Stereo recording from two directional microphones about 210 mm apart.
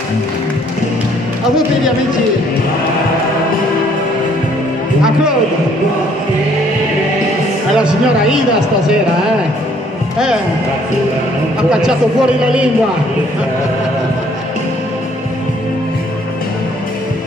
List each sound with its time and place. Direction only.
7.7 s speech: 5° right (ahead or behind)
10.1 s speech: 5° right (ahead or behind)
11.7 s speech: 5° right (ahead or behind)